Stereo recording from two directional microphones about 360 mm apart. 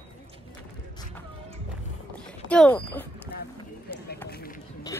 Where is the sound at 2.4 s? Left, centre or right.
Centre.